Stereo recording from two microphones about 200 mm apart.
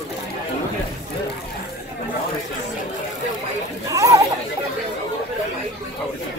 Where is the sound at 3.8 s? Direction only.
15° right (ahead or behind).